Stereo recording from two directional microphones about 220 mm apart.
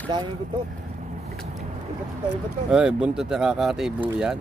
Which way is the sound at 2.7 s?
5° right (ahead or behind).